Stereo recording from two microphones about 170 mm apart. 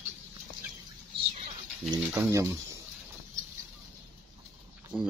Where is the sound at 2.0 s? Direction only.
10° right (ahead or behind).